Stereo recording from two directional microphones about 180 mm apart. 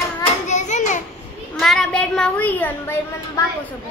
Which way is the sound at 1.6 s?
Centre (ahead or behind).